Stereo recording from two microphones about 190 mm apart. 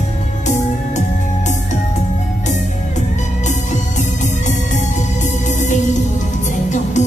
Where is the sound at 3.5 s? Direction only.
40° left (ahead or behind).